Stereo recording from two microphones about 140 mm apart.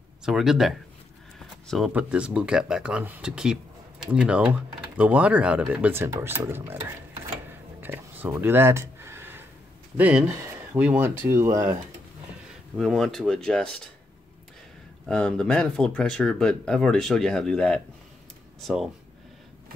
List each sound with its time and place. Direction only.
0.2 s speech: 5° right (ahead or behind)
1.9 s speech: 10° right (ahead or behind)
7.8 s a sound: 15° right (ahead or behind)
9.9 s speech: 10° right (ahead or behind)
12.7 s speech: centre (ahead or behind)
15.0 s speech: 5° left (ahead or behind)